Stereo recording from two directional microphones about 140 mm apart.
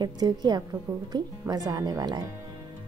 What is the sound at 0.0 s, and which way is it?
Speech, 30° right (ahead or behind).